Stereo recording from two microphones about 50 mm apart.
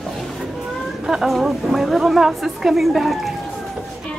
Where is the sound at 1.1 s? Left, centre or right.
Centre.